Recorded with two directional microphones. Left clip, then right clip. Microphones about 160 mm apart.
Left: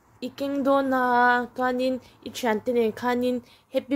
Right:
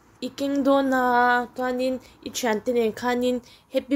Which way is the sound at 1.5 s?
15° left (ahead or behind).